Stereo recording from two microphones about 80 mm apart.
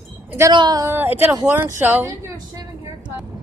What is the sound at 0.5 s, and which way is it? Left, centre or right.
Speech, right.